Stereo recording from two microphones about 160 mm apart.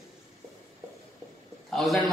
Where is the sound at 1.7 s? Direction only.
Centre (ahead or behind).